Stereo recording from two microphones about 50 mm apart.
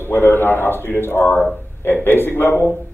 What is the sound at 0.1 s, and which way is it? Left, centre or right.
A man's voice, left.